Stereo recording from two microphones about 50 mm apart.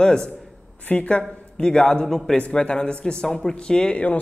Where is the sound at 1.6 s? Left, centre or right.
Centre.